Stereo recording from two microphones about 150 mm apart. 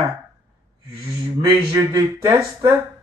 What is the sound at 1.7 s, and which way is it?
Speech, 30° right (ahead or behind).